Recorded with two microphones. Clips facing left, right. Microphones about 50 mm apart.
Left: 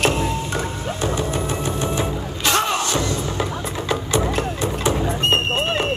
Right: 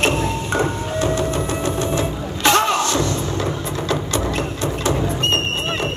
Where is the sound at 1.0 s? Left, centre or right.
Left.